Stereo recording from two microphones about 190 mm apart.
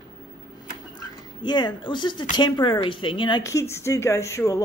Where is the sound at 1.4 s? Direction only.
25° left (ahead or behind).